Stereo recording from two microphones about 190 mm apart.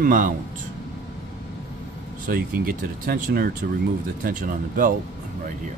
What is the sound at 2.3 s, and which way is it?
Speech, 50° right (ahead or behind).